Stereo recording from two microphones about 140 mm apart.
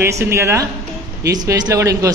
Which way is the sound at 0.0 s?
20° right (ahead or behind).